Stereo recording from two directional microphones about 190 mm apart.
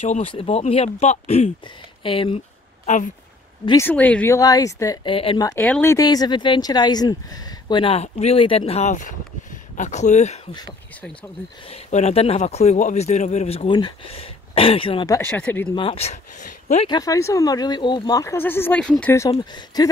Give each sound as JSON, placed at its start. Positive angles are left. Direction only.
{"t": 0.0, "sound": "a man's voice", "side_deg": 35}
{"t": 3.6, "sound": "speech", "side_deg": 15}
{"t": 5.5, "sound": "a man's voice", "side_deg": 10}
{"t": 11.7, "sound": "a man's voice", "side_deg": 35}
{"t": 15.1, "sound": "speech", "side_deg": 10}
{"t": 15.7, "sound": "speech", "side_deg": 30}
{"t": 16.8, "sound": "speech", "side_deg": 20}